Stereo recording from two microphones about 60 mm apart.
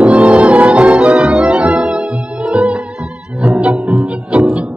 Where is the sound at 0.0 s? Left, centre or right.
Right.